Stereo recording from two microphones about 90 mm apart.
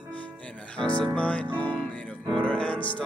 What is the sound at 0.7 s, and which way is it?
Music, 10° left (ahead or behind).